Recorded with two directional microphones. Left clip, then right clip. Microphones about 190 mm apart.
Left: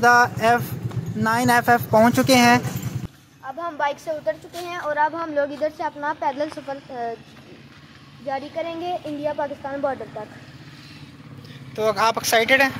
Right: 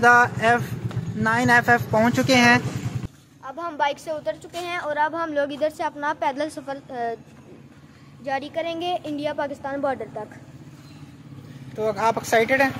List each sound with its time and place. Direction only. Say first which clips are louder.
0.0 s speech: even; 10° left (ahead or behind)
3.4 s a woman's voice: even; 35° right (ahead or behind); by 5.5 s 20° right (ahead or behind)
5.5 s a woman's voice: even; 35° right (ahead or behind)
5.9 s a woman's voice: even; 20° right (ahead or behind)
6.2 s a woman's voice: left 2 dB; 35° right (ahead or behind)
8.3 s a woman's voice: right 1 dB; 35° right (ahead or behind)
11.7 s speech: left 2 dB; 10° right (ahead or behind)